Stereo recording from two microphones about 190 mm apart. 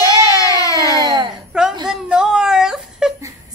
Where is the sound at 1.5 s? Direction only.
5° right (ahead or behind).